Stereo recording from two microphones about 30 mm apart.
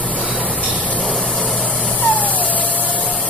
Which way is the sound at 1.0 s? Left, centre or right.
Centre.